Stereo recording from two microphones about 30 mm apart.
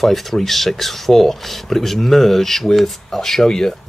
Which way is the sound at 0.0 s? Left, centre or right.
Centre.